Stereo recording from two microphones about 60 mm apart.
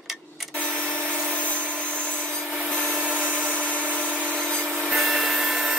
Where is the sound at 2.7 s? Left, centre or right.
Left.